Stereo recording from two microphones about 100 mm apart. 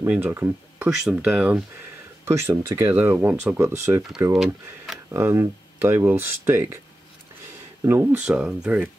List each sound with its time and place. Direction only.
0.0 s speech: 20° right (ahead or behind)
4.3 s speech: 5° right (ahead or behind)
5.1 s speech: 25° right (ahead or behind)
7.9 s speech: 20° right (ahead or behind)
8.2 s speech: 10° right (ahead or behind)